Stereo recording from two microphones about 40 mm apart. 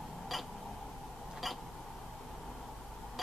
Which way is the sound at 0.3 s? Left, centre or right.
Centre.